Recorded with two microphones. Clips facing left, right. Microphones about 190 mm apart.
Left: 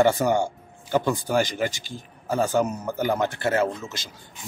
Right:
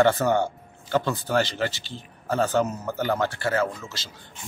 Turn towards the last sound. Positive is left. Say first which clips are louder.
# left 2 dB
turn(degrees=20)  # may be behind; listen again after turning